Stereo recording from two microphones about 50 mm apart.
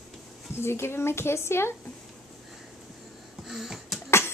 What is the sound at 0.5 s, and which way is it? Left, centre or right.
A woman's voice, left.